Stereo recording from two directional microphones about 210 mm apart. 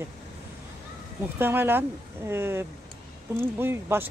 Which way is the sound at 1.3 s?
10° right (ahead or behind).